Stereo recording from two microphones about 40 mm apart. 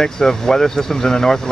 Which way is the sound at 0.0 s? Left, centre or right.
Centre.